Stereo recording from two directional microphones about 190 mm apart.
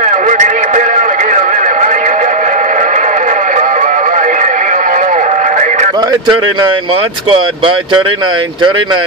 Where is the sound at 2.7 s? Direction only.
40° right (ahead or behind).